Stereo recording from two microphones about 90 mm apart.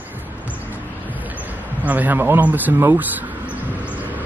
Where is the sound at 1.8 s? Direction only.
20° right (ahead or behind).